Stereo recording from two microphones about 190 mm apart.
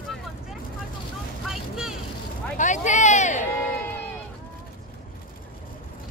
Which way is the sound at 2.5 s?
40° left (ahead or behind).